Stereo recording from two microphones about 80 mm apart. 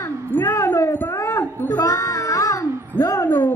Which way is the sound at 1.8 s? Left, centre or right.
Left.